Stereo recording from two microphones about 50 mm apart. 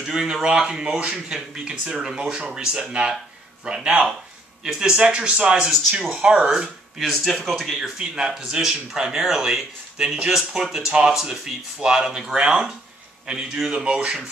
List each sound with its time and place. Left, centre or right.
0.0 s speech: centre
7.0 s speech: centre
8.0 s speech: centre